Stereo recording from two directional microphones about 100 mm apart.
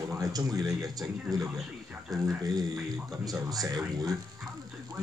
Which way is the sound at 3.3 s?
40° right (ahead or behind).